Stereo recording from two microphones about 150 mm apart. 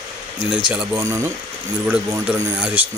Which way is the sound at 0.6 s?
5° right (ahead or behind).